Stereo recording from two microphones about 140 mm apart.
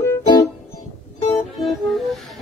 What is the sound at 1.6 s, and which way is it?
Music, centre (ahead or behind).